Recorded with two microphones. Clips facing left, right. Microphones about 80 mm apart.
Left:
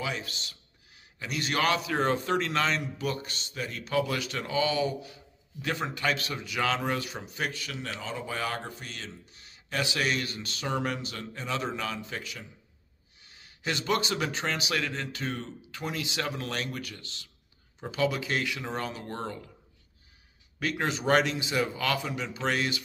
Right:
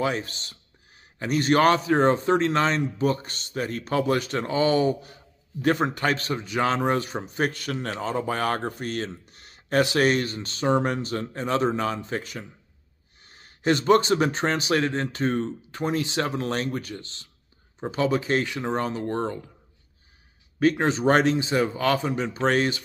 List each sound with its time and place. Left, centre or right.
0.0 s a man's voice: right
20.5 s a man's voice: right